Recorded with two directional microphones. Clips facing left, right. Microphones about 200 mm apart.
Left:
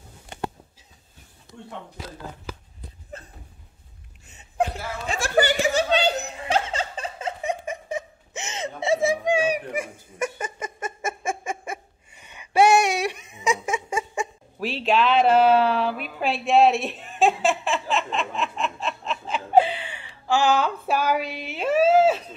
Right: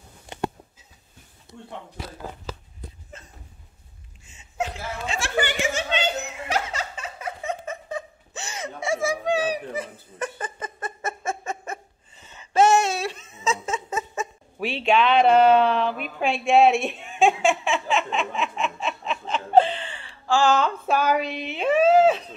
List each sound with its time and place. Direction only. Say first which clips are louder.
1.5 s speech: left 1 dB; 90° left
4.3 s chuckle: left 4 dB; 60° left (ahead or behind)
5.2 s chuckle: left 5 dB; 40° left (ahead or behind)
7.4 s giggle: left 2 dB; 15° left (ahead or behind)
14.6 s a sound: right 1 dB; centre (ahead or behind)